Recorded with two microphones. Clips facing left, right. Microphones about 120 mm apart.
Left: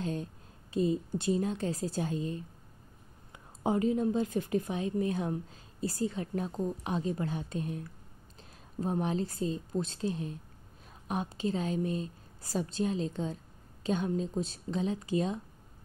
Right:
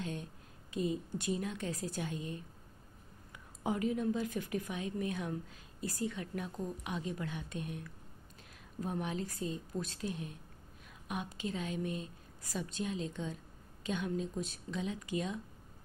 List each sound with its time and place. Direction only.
0.0 s a woman's voice: 35° left (ahead or behind)
3.6 s a woman's voice: 30° left (ahead or behind)